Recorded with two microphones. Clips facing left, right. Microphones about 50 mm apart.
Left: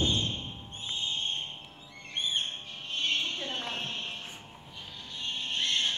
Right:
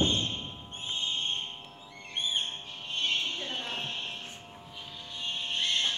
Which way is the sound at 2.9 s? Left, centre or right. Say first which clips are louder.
Even; centre.